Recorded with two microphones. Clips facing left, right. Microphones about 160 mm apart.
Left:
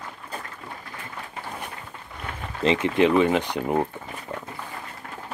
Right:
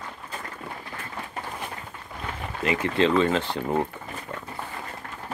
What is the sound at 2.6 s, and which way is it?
Speech, 25° left (ahead or behind).